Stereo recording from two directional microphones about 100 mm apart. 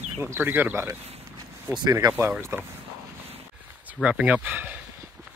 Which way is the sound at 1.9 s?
40° right (ahead or behind).